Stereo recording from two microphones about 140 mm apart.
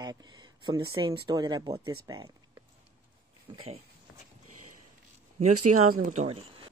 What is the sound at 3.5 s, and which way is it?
Speech, 40° right (ahead or behind).